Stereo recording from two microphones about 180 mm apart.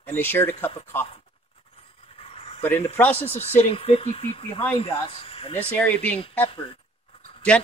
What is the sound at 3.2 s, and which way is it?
Speech, 35° left (ahead or behind).